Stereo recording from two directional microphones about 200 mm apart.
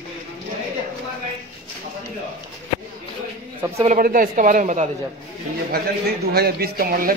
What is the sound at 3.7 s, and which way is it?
Speech, 40° right (ahead or behind).